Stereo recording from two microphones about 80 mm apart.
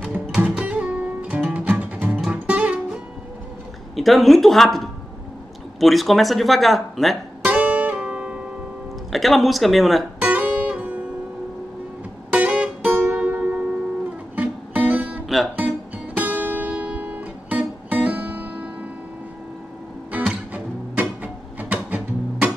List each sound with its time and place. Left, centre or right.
0.1 s music: centre
3.9 s speech: centre
7.4 s music: centre
9.1 s speech: centre
10.2 s music: centre
12.3 s music: centre
20.2 s music: centre